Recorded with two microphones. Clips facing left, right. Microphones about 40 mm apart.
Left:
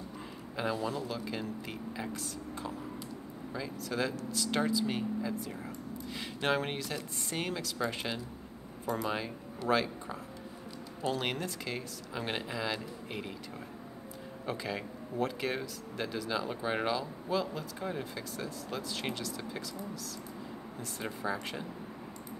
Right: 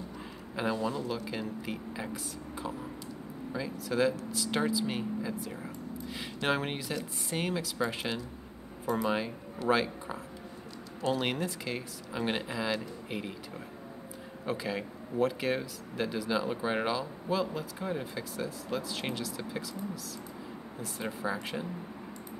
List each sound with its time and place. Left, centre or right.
0.6 s speech: centre
2.6 s whispering: centre
3.5 s speech: centre